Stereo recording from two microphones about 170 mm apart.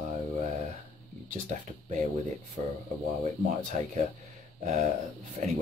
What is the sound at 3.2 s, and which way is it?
Speech, 45° right (ahead or behind).